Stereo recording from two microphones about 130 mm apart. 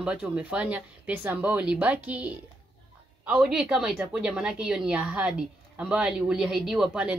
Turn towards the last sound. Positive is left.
turn(degrees=-10)  # may be behind; listen again after turning